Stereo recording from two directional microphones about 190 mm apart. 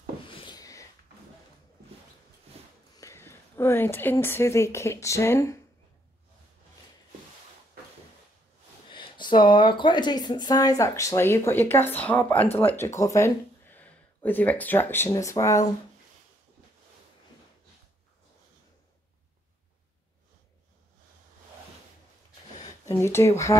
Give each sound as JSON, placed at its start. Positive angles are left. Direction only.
{"t": 0.3, "sound": "a sound", "side_deg": 25}
{"t": 3.0, "sound": "a woman's voice", "side_deg": 15}
{"t": 8.9, "sound": "speech", "side_deg": 25}
{"t": 22.8, "sound": "speech", "side_deg": 15}